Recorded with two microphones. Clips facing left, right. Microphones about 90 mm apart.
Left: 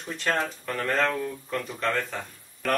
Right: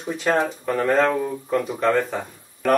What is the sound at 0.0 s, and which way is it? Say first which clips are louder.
Speech: right 6 dB; 10° right (ahead or behind).